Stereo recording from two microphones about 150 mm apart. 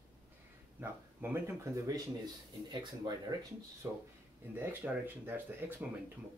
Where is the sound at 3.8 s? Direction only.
20° right (ahead or behind).